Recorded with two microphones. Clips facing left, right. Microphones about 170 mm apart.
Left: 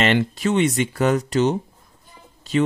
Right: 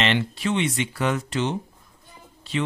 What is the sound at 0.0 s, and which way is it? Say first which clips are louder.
Speech: left 4 dB; 45° left (ahead or behind).